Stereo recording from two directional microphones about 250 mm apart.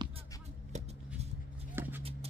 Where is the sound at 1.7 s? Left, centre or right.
Centre.